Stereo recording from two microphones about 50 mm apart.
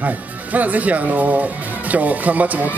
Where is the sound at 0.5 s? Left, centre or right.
Right.